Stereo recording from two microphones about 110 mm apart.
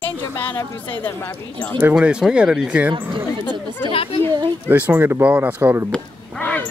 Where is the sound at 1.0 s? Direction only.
15° left (ahead or behind).